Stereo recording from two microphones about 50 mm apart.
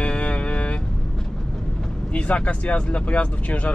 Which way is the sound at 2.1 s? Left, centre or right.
Left.